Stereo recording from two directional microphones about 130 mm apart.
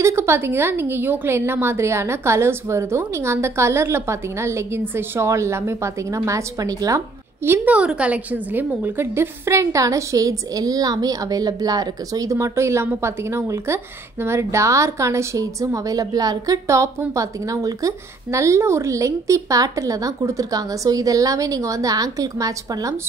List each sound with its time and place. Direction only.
0.0 s a woman's voice: 20° right (ahead or behind)
7.4 s a woman's voice: 15° right (ahead or behind)